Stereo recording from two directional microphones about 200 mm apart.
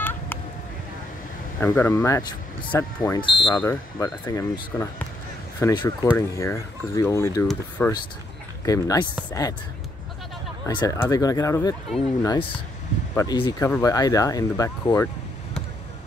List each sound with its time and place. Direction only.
1.6 s speech: 15° left (ahead or behind)
3.2 s speech: 25° left (ahead or behind)
3.5 s speech: 15° left (ahead or behind)
8.6 s speech: 15° left (ahead or behind)
10.7 s speech: 20° left (ahead or behind)